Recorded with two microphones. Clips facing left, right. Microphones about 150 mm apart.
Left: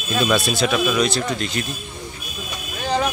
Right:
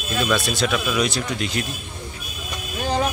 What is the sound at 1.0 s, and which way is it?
Speech, 10° right (ahead or behind).